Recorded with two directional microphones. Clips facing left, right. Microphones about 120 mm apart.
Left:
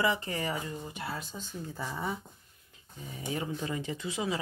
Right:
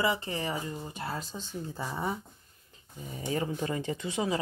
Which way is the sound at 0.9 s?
35° right (ahead or behind).